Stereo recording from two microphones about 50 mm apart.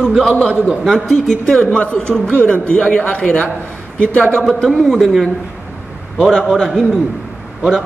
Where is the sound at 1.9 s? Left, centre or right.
Centre.